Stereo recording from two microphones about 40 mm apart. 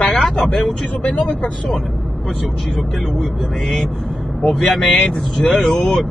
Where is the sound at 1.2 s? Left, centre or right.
Left.